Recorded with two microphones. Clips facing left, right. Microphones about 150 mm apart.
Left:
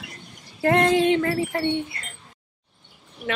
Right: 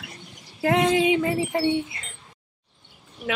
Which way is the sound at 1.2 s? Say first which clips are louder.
Right 1 dB; 20° right (ahead or behind).